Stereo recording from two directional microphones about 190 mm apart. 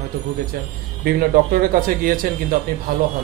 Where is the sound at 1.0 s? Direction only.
50° right (ahead or behind).